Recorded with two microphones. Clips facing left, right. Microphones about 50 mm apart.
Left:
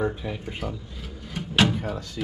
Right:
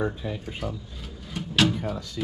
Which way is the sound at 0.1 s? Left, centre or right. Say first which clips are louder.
Left 1 dB; left.